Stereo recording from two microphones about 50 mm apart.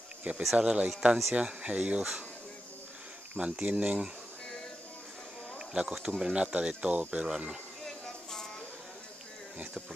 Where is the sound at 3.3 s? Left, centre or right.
Right.